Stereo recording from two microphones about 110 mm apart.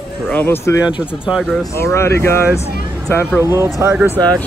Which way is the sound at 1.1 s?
5° right (ahead or behind).